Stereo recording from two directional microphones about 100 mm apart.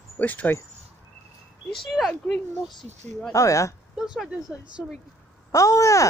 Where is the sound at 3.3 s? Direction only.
30° left (ahead or behind).